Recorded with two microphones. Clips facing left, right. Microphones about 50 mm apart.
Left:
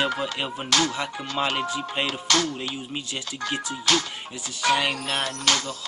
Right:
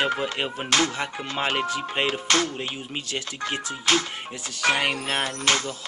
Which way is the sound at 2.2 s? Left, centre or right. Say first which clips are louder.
Even; right.